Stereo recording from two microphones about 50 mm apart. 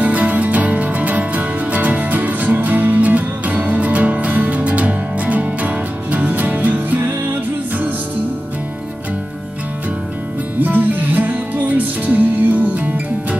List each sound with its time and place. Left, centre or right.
0.0 s music: right
10.6 s music: right